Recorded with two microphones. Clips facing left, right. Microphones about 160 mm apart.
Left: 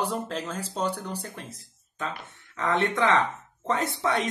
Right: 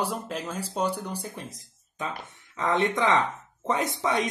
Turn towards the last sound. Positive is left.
turn(degrees=-15)  # may be behind; listen again after turning